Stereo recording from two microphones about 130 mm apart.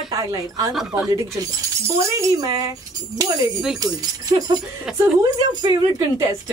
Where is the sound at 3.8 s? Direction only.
30° right (ahead or behind).